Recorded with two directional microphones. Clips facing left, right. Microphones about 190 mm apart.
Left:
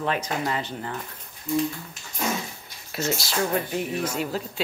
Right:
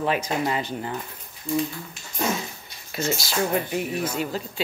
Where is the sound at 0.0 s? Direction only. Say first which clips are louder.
Right 2 dB; 10° right (ahead or behind).